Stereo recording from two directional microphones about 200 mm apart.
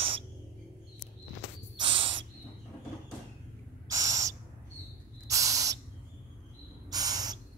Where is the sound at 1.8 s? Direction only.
25° right (ahead or behind).